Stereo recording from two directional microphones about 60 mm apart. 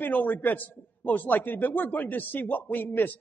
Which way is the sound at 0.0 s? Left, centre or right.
Left.